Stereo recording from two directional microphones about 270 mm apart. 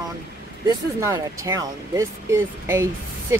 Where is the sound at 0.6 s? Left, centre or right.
Centre.